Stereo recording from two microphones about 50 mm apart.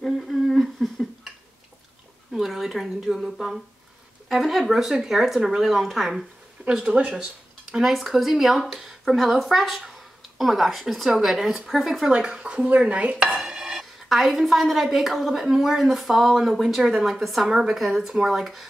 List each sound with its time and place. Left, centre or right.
0.5 s a sound: centre
2.3 s a woman's voice: centre
7.0 s dishes: right
7.7 s a woman's voice: centre
12.1 s dishes: centre
13.4 s dishes: centre
14.0 s a woman's voice: centre